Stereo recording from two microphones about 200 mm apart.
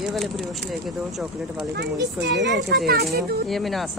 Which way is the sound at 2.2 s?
60° right (ahead or behind).